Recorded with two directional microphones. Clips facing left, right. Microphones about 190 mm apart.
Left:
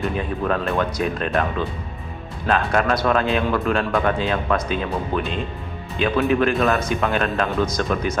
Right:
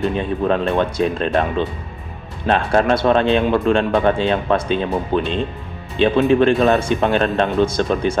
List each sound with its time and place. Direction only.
0.2 s speech: 25° right (ahead or behind)